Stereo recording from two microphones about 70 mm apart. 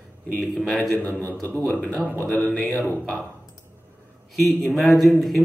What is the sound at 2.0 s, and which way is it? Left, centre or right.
Speech, left.